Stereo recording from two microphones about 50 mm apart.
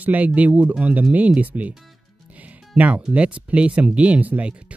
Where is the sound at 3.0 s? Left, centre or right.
Right.